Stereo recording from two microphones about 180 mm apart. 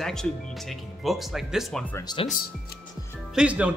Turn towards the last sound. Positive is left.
turn(degrees=-5)  # may be behind; listen again after turning